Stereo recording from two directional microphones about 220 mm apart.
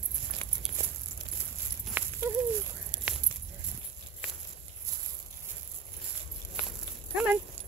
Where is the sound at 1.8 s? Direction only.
10° right (ahead or behind).